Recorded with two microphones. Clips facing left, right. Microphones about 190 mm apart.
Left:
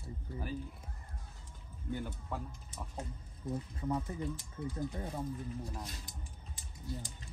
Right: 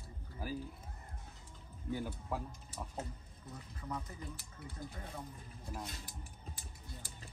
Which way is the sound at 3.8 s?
30° left (ahead or behind).